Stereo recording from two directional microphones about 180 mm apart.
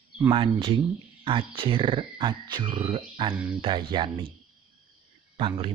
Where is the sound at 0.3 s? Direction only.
30° right (ahead or behind).